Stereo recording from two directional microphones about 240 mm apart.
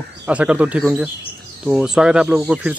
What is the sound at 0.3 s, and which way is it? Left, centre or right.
Speech, centre.